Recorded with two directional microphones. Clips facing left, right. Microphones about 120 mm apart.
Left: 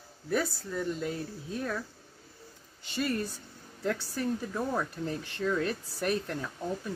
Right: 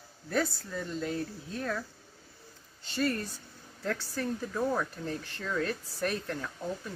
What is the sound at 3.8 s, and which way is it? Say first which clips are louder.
Speech: left 2 dB; 15° left (ahead or behind).